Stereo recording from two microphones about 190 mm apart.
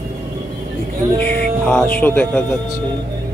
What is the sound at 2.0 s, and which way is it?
Speech, 10° left (ahead or behind).